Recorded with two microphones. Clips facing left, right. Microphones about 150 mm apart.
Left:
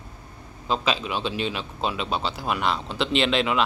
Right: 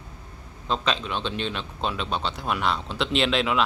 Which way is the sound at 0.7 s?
5° left (ahead or behind).